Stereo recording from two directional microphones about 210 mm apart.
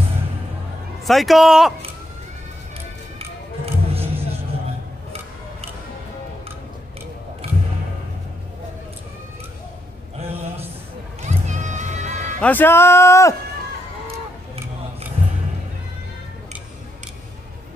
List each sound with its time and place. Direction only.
1.0 s a man's voice: centre (ahead or behind)
3.2 s music: 30° right (ahead or behind)
7.4 s music: 30° right (ahead or behind)
11.2 s music: 35° right (ahead or behind)
12.4 s speech: 10° left (ahead or behind)